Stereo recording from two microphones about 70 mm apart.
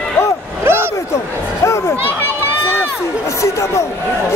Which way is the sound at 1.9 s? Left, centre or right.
Left.